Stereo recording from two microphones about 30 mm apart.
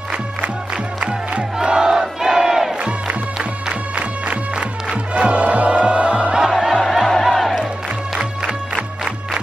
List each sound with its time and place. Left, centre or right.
1.6 s crowd: right
5.2 s music: right
6.3 s music: centre
7.1 s music: centre
8.2 s music: right